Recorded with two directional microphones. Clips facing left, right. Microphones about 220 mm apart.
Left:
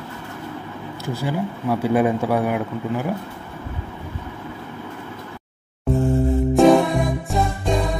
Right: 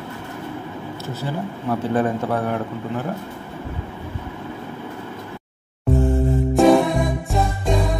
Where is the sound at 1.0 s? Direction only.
10° left (ahead or behind).